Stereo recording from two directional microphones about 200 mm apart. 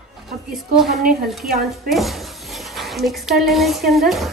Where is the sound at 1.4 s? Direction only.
50° right (ahead or behind).